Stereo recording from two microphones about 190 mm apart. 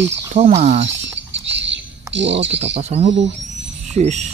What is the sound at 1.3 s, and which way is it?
Bird, 70° right (ahead or behind).